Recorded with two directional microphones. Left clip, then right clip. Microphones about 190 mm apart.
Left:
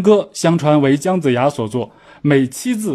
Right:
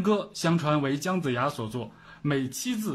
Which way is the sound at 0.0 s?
35° left (ahead or behind).